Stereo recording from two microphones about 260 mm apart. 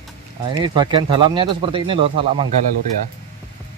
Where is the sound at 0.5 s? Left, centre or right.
Centre.